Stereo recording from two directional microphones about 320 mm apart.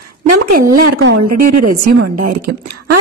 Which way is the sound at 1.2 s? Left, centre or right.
Right.